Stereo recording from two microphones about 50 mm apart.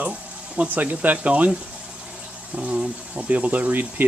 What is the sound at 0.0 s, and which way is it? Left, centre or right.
Speech, right.